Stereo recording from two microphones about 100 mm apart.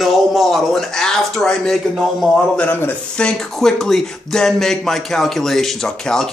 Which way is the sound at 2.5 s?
20° left (ahead or behind).